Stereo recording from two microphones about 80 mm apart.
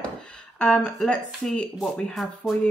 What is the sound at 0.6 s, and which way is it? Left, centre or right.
Speech, centre.